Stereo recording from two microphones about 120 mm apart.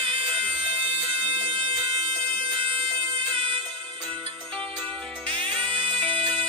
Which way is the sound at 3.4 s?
60° right (ahead or behind).